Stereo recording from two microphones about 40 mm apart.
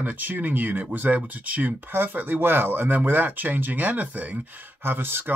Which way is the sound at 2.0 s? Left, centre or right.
Right.